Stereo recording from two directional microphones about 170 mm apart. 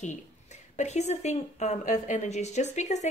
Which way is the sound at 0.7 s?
40° left (ahead or behind).